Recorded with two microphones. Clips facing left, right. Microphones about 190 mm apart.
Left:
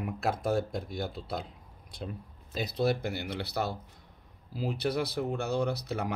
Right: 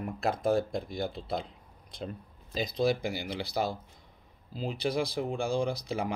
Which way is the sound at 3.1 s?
60° left (ahead or behind).